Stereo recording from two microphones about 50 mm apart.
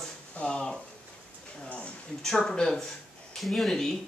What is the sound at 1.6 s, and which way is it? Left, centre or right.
Speech, left.